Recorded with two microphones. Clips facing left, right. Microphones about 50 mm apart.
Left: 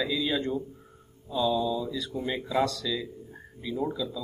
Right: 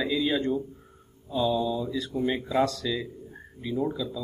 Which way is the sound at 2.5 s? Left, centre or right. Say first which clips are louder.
Right 1 dB; centre.